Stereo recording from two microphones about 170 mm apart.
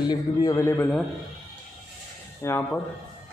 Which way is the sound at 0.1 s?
25° left (ahead or behind).